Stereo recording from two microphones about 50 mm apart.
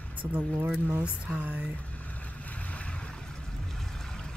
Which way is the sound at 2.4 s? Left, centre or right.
Left.